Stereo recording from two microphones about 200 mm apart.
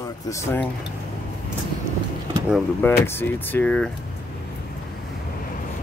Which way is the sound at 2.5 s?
10° left (ahead or behind).